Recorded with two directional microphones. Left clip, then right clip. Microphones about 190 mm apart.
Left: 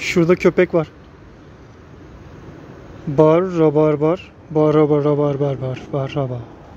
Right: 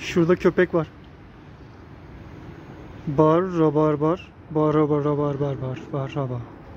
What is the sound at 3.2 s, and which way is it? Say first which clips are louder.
Speech: left 5 dB; 10° left (ahead or behind).